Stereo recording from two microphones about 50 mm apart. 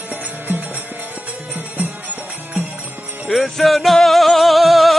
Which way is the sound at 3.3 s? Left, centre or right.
Centre.